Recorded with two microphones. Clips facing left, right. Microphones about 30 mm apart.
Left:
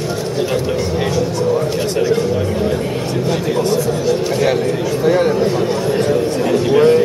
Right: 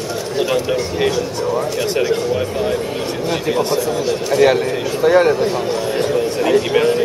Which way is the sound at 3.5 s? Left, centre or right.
Centre.